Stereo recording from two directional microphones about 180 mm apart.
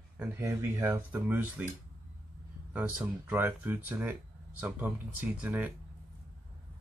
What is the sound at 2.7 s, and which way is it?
Speech, 10° right (ahead or behind).